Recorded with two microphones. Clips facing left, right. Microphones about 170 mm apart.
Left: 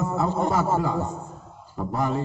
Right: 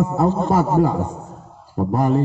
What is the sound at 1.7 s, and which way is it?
Speech, 45° right (ahead or behind).